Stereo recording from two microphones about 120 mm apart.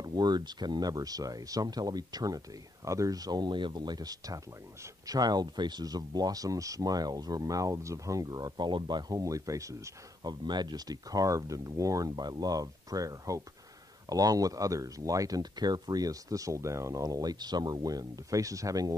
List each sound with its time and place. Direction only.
0.0 s speech: 35° right (ahead or behind)